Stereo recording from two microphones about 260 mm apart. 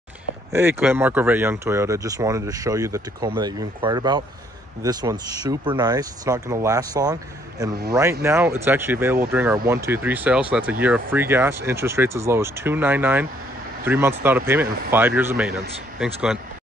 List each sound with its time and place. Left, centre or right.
0.5 s speech: centre